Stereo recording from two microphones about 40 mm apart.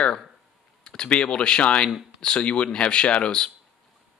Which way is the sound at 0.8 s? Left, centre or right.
Left.